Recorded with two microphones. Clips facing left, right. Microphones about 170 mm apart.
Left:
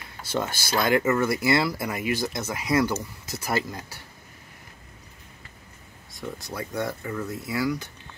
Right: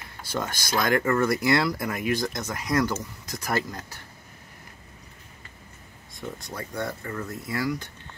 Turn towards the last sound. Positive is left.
turn(degrees=5)  # may be behind; listen again after turning